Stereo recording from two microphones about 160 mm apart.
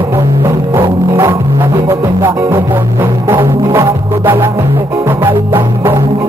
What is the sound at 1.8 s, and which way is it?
Music, 20° right (ahead or behind).